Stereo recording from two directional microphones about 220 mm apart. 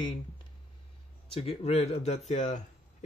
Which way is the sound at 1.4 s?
30° left (ahead or behind).